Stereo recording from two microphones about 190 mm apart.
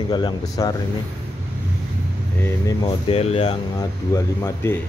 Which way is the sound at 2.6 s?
25° left (ahead or behind).